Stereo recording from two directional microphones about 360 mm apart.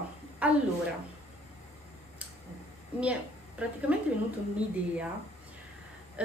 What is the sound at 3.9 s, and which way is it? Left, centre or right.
Speech, centre.